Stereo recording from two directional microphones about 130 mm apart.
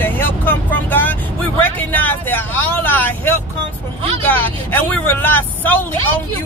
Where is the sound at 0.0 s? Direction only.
15° left (ahead or behind).